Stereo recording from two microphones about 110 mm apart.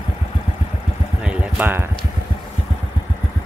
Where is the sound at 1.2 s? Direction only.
15° right (ahead or behind).